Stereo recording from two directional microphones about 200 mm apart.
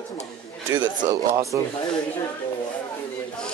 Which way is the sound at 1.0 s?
20° right (ahead or behind).